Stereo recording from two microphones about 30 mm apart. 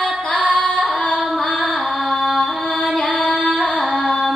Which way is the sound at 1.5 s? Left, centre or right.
Centre.